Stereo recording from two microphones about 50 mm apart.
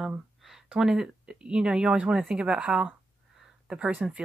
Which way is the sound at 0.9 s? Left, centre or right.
Centre.